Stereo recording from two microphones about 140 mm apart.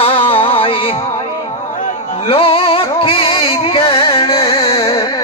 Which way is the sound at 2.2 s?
40° left (ahead or behind).